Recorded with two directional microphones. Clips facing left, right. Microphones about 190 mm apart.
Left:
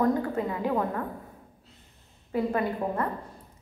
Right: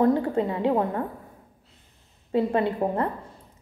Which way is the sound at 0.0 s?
25° right (ahead or behind).